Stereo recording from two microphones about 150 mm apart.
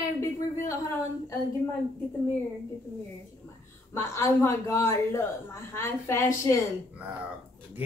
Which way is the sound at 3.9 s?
15° left (ahead or behind).